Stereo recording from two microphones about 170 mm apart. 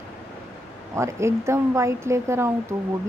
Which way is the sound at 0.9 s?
15° right (ahead or behind).